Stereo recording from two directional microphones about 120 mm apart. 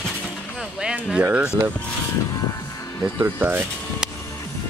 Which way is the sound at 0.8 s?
10° right (ahead or behind).